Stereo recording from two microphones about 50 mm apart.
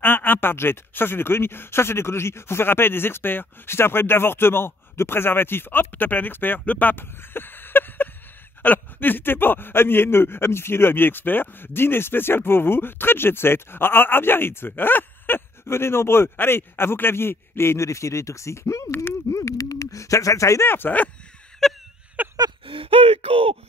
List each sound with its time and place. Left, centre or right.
0.0 s speech: left
15.6 s speech: left
17.7 s speech: left
20.6 s speech: left
21.6 s a sound: centre
22.2 s a sound: right